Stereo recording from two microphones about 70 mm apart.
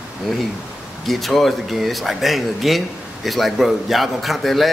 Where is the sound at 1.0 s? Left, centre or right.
Centre.